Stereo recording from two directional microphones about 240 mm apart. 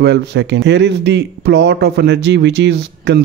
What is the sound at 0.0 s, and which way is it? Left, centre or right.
Speech, right.